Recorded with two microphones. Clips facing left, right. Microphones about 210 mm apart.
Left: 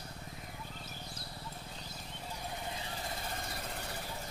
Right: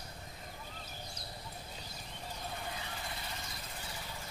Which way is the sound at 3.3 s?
55° left (ahead or behind).